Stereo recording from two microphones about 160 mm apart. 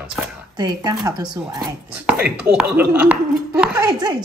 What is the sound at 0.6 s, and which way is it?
Speech, 25° right (ahead or behind).